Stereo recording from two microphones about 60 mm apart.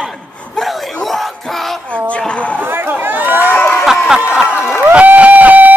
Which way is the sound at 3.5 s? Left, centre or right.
Left.